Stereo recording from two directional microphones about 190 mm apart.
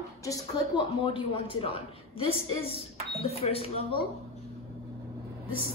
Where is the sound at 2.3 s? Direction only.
30° left (ahead or behind).